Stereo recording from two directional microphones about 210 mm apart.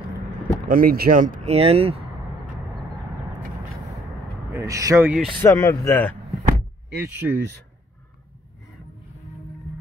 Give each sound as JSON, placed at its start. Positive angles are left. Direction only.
{"t": 0.7, "sound": "speech", "side_deg": -45}
{"t": 4.5, "sound": "speech", "side_deg": -15}
{"t": 5.4, "sound": "speech", "side_deg": 15}
{"t": 7.0, "sound": "speech", "side_deg": -10}